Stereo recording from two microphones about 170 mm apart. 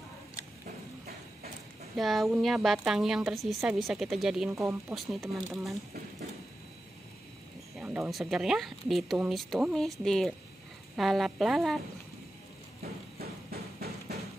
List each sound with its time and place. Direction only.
2.0 s a woman's voice: centre (ahead or behind)
7.7 s a sound: 10° right (ahead or behind)
8.1 s a woman's voice: centre (ahead or behind)
13.2 s music: 65° right (ahead or behind)